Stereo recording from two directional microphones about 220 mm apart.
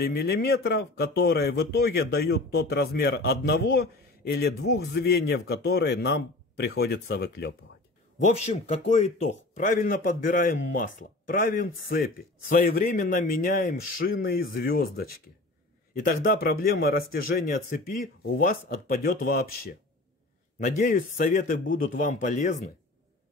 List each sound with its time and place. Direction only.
0.0 s speech: 45° left (ahead or behind)
8.2 s speech: 30° left (ahead or behind)